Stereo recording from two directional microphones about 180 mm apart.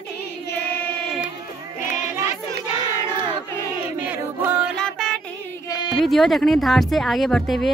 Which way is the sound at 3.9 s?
10° right (ahead or behind).